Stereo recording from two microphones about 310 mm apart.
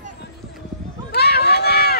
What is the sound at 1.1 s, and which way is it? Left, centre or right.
Run, left.